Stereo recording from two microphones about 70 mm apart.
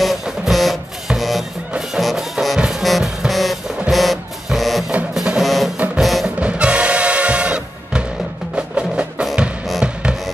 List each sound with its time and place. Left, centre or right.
0.0 s music: centre
6.4 s music: centre